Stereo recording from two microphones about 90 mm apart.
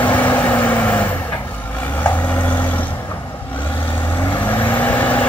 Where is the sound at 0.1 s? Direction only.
20° left (ahead or behind).